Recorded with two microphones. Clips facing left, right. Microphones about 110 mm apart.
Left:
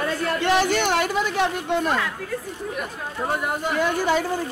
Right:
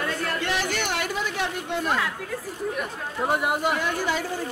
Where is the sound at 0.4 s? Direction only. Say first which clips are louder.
Left 7 dB; 25° left (ahead or behind).